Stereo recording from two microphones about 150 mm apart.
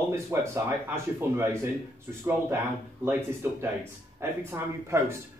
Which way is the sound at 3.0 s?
15° right (ahead or behind).